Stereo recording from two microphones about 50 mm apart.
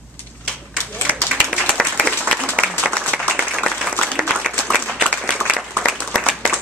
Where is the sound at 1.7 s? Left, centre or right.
Left.